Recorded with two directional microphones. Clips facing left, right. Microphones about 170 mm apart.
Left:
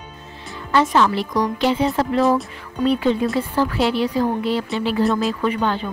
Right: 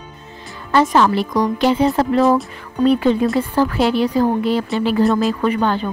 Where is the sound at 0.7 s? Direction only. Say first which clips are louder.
Right 3 dB; 40° right (ahead or behind).